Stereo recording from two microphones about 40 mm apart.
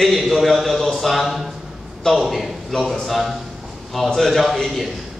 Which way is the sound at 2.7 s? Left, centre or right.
Centre.